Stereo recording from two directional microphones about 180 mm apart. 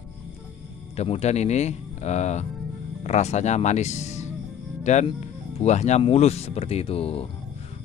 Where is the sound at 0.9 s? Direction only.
35° left (ahead or behind).